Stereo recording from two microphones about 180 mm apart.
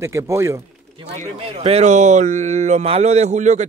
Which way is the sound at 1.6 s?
40° right (ahead or behind).